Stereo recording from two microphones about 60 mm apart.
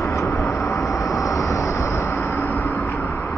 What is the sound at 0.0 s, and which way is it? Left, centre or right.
Vehicle, left.